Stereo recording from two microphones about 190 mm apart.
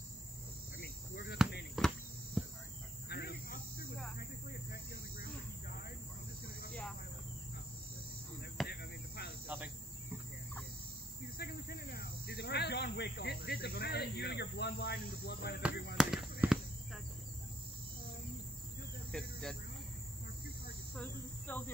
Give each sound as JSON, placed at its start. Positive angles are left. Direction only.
{"t": 0.7, "sound": "cricket", "side_deg": 55}
{"t": 1.8, "sound": "cricket", "side_deg": 0}
{"t": 2.4, "sound": "a sound", "side_deg": 0}
{"t": 3.1, "sound": "cricket", "side_deg": 55}
{"t": 4.2, "sound": "hum", "side_deg": 55}
{"t": 6.7, "sound": "cricket", "side_deg": 5}
{"t": 8.6, "sound": "a sound", "side_deg": 60}
{"t": 9.5, "sound": "cricket", "side_deg": -10}
{"t": 11.3, "sound": "a sound", "side_deg": 55}
{"t": 15.7, "sound": "speech", "side_deg": 55}
{"t": 16.0, "sound": "firecracker", "side_deg": 0}
{"t": 19.1, "sound": "cricket", "side_deg": 5}
{"t": 20.9, "sound": "cricket", "side_deg": 5}